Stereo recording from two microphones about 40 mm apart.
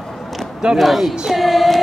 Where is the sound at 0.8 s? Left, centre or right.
Centre.